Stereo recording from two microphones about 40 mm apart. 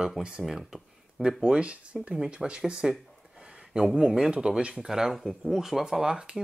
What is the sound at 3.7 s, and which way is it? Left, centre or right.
Speech, centre.